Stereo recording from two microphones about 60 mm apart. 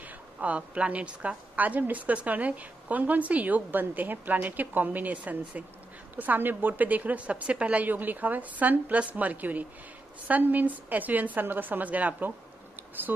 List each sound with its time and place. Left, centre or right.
0.0 s a woman's voice: right